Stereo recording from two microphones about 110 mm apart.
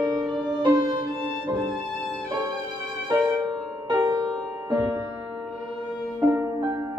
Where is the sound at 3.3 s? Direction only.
40° right (ahead or behind).